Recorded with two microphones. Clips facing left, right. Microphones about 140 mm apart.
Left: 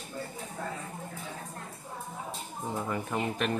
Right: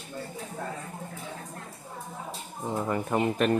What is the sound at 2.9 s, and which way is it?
Speech, 50° right (ahead or behind).